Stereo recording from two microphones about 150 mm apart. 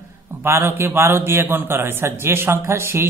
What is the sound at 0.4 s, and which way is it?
A man's voice, 15° right (ahead or behind).